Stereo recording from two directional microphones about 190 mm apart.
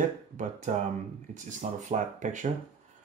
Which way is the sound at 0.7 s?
45° right (ahead or behind).